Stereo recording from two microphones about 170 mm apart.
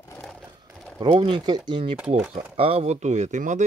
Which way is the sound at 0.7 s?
Centre (ahead or behind).